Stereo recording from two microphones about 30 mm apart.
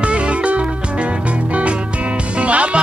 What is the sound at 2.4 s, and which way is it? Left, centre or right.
Music, right.